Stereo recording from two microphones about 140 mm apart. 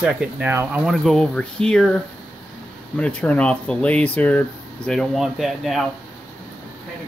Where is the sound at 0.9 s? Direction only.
5° left (ahead or behind).